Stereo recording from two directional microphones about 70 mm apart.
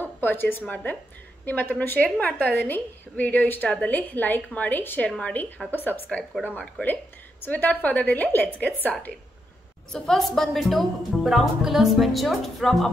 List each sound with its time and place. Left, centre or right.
0.0 s a woman's voice: left
3.6 s a woman's voice: centre
9.9 s a woman's voice: centre